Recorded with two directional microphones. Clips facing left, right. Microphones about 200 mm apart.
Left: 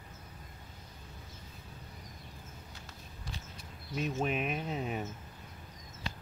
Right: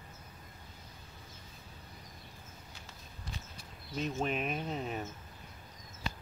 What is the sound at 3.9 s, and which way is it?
Speech, 5° left (ahead or behind).